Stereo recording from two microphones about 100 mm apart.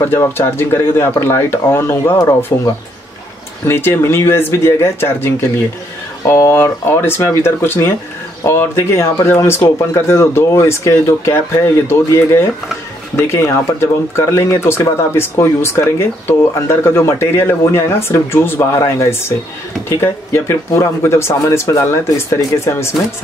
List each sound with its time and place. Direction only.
0.0 s speech: 25° left (ahead or behind)